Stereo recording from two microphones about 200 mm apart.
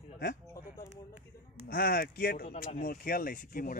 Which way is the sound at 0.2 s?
45° left (ahead or behind).